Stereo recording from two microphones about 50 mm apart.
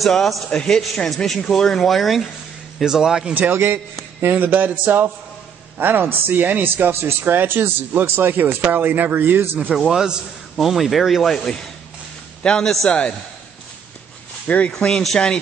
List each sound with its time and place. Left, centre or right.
0.0 s speech: centre
0.5 s a man's voice: centre
0.7 s a man's voice: centre
2.8 s a man's voice: centre
3.3 s a man's voice: right
9.8 s a man's voice: centre
11.3 s a man's voice: centre
14.8 s a man's voice: centre